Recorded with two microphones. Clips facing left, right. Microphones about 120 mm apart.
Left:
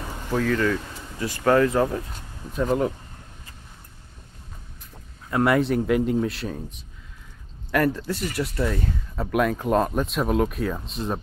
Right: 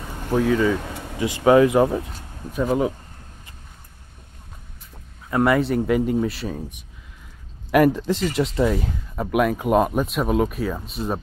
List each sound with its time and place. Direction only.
0.3 s speech: 5° right (ahead or behind)
0.7 s a sound: 65° right (ahead or behind)
1.2 s speech: 15° right (ahead or behind)
2.5 s speech: 5° right (ahead or behind)
5.3 s speech: centre (ahead or behind)
7.7 s speech: 15° right (ahead or behind)